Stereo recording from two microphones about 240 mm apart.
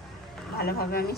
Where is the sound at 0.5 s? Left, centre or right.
Left.